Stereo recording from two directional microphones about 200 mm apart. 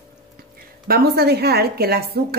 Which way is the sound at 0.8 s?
50° right (ahead or behind).